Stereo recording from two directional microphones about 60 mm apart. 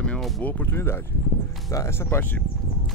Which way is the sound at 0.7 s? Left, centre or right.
Left.